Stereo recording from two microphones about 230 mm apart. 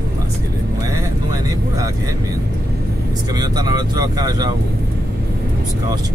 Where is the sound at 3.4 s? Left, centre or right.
Centre.